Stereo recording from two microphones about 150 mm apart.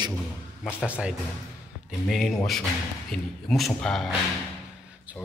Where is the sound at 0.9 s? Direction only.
5° right (ahead or behind).